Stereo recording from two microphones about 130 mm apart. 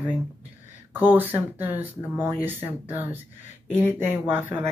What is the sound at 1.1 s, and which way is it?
Speech, 15° right (ahead or behind).